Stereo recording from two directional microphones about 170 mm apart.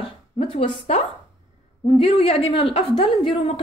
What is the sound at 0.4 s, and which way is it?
A woman's voice, 35° left (ahead or behind).